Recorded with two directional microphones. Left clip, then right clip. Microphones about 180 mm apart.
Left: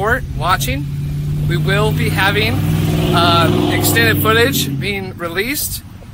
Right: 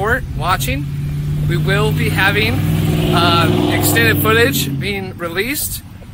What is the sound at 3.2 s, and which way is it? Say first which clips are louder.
Speech: left 1 dB; centre (ahead or behind).